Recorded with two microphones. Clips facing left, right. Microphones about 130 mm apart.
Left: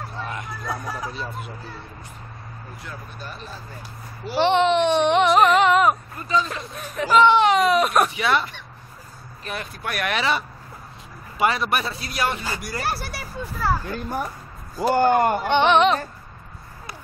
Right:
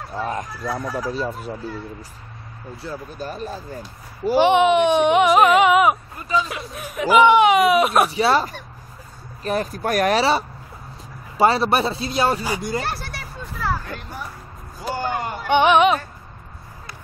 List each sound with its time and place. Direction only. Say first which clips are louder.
0.2 s a man's voice: right 7 dB; 40° right (ahead or behind)
2.8 s speech: right 9 dB; 35° right (ahead or behind)
4.4 s speech: right 3 dB; 10° right (ahead or behind)
8.1 s a man's voice: right 4 dB; 35° right (ahead or behind)
12.4 s a sound: right 5 dB; 20° right (ahead or behind)
12.8 s speech: left 1 dB; 5° left (ahead or behind)
14.8 s speech: left 8 dB; 55° left (ahead or behind)
15.4 s a sound: right 7 dB; 10° right (ahead or behind)